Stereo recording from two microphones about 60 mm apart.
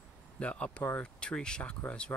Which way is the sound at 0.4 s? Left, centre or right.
Centre.